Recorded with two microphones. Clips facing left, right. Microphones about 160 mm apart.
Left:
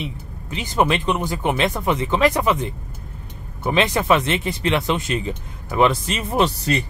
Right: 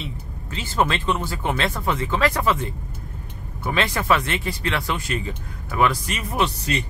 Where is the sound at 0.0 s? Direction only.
15° left (ahead or behind).